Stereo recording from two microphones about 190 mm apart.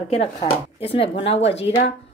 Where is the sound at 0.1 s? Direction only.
30° left (ahead or behind).